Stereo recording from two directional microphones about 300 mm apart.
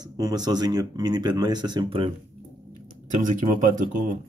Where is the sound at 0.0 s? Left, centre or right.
Centre.